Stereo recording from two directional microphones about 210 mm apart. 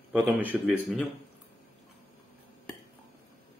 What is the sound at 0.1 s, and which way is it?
Speech, 5° right (ahead or behind).